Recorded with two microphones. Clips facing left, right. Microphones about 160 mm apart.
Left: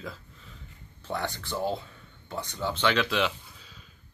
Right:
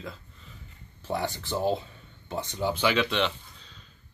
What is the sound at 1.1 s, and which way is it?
Speech, 15° right (ahead or behind).